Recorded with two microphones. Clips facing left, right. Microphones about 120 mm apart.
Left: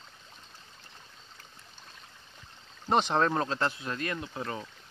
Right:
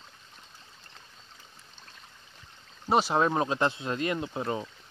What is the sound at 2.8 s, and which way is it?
Speech, 5° right (ahead or behind).